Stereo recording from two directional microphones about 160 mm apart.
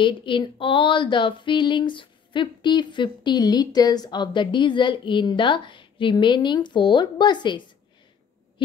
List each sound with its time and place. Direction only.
0.0 s female singing: 30° left (ahead or behind)